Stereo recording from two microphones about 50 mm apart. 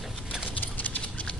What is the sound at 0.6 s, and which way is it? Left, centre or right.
Clip-clop, left.